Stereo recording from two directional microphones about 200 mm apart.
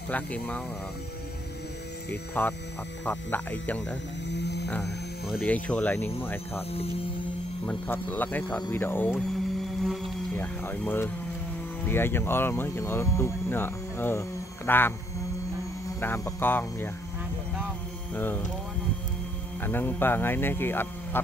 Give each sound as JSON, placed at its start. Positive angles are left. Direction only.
{"t": 0.1, "sound": "speech", "side_deg": 5}
{"t": 2.4, "sound": "speech", "side_deg": 10}
{"t": 4.3, "sound": "hum", "side_deg": 55}
{"t": 5.4, "sound": "speech", "side_deg": 5}
{"t": 7.6, "sound": "speech", "side_deg": 10}
{"t": 10.3, "sound": "speech", "side_deg": 10}
{"t": 16.0, "sound": "speech", "side_deg": 10}
{"t": 18.1, "sound": "speech", "side_deg": 10}
{"t": 19.6, "sound": "speech", "side_deg": 10}